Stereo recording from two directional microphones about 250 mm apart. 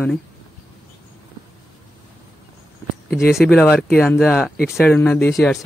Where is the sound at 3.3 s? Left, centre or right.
Centre.